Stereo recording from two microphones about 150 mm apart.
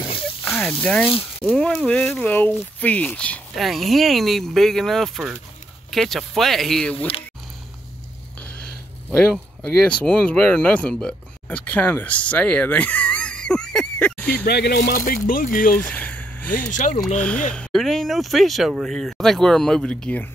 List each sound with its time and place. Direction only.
0.5 s speech: 10° left (ahead or behind)
9.1 s speech: 5° left (ahead or behind)
14.4 s speech: 90° left
15.0 s speech: 70° left (ahead or behind)
15.9 s vehicle: 10° left (ahead or behind)
16.5 s speech: 55° left (ahead or behind)
17.2 s speech: 10° left (ahead or behind)